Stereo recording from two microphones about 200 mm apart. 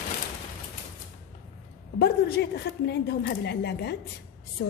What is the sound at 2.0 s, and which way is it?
A woman's voice, 55° left (ahead or behind).